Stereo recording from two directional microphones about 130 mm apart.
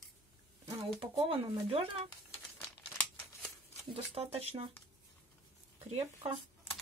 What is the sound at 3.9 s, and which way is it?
Speech, 50° right (ahead or behind).